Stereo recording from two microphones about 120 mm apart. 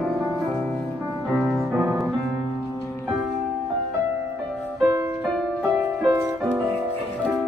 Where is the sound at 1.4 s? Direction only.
Centre (ahead or behind).